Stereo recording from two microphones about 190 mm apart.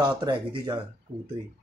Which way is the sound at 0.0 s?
25° right (ahead or behind).